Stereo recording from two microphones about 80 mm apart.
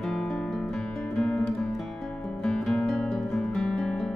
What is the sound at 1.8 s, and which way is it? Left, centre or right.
Music, centre.